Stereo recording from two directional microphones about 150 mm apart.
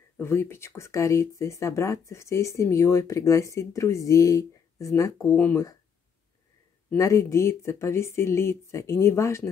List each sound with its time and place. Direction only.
0.2 s speech: 15° left (ahead or behind)
7.0 s speech: 20° left (ahead or behind)